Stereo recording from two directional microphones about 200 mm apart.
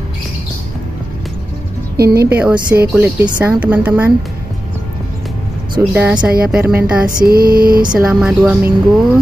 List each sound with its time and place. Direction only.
2.0 s a woman's voice: 50° right (ahead or behind)
2.2 s a woman's voice: 5° right (ahead or behind)
5.8 s a woman's voice: 10° right (ahead or behind)
7.2 s lullaby: 50° right (ahead or behind)
7.9 s speech: 5° right (ahead or behind)